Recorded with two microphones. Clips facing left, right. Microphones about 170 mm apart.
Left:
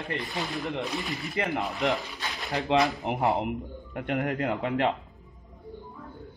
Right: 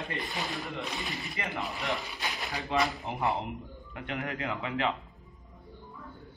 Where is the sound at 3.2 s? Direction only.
45° left (ahead or behind).